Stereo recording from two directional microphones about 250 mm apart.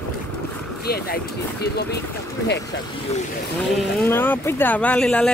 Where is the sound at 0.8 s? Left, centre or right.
Left.